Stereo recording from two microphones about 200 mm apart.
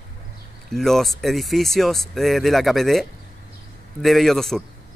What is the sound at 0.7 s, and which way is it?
Speech, centre (ahead or behind).